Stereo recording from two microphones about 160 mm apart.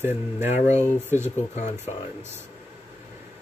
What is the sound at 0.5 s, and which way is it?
Speech, 45° left (ahead or behind).